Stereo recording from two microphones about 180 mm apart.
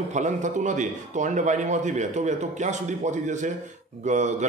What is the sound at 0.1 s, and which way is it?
A man's voice, 40° right (ahead or behind).